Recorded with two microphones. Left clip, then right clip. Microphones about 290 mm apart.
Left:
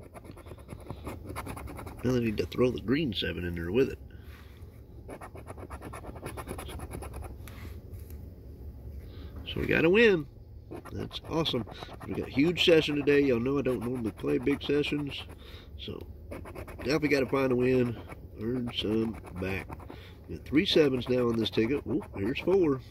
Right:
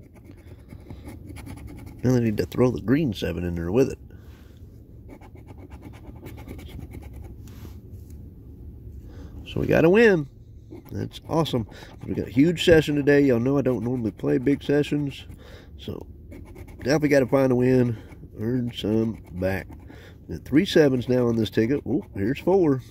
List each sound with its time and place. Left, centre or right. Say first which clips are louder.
2.3 s speech: right 5 dB; right
9.5 s speech: right 6 dB; centre
16.8 s speech: right 7 dB; right